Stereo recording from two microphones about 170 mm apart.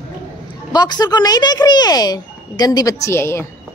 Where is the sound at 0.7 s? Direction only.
25° left (ahead or behind).